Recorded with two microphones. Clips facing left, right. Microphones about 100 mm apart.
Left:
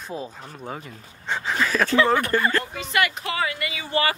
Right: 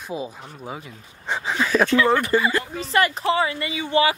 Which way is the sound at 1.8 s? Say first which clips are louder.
Even; 30° left (ahead or behind).